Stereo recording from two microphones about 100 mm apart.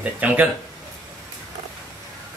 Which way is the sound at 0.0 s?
15° right (ahead or behind).